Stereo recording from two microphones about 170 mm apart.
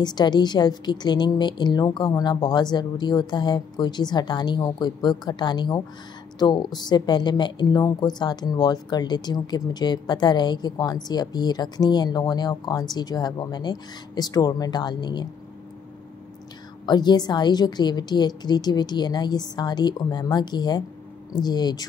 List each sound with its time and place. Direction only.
0.0 s a woman's voice: 25° left (ahead or behind)
16.8 s a woman's voice: 25° left (ahead or behind)